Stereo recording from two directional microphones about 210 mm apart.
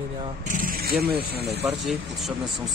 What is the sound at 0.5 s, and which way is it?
Speech, 45° right (ahead or behind).